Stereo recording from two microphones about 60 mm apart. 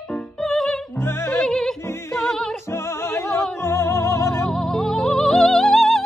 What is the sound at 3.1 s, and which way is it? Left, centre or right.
Music, left.